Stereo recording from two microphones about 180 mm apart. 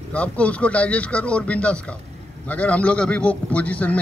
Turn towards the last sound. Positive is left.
turn(degrees=10)  # may be behind; listen again after turning